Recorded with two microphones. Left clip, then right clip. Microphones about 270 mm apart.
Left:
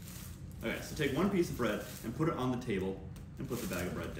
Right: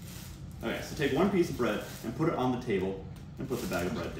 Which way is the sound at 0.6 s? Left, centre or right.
Centre.